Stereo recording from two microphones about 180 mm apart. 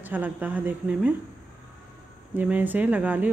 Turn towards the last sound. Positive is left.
turn(degrees=-10)  # may be behind; listen again after turning